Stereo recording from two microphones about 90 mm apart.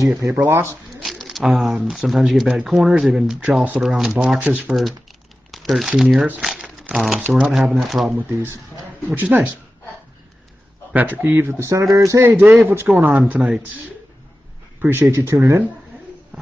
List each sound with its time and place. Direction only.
0.3 s speech: 25° right (ahead or behind)
1.0 s a sound: centre (ahead or behind)
1.9 s speech: centre (ahead or behind)
4.4 s speech: 15° right (ahead or behind)
5.5 s speech: centre (ahead or behind)
6.4 s crumpling: 5° right (ahead or behind)
7.2 s speech: 15° right (ahead or behind)
7.5 s speech: 5° right (ahead or behind)
8.2 s speech: 25° right (ahead or behind)
10.9 s speech: 20° right (ahead or behind)
12.4 s speech: 20° right (ahead or behind)
14.8 s speech: 20° right (ahead or behind)
15.1 s speech: 35° right (ahead or behind)